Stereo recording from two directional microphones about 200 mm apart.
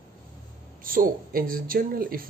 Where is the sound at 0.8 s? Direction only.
45° right (ahead or behind).